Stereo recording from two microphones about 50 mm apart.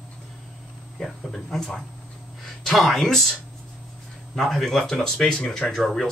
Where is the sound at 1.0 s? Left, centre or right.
Centre.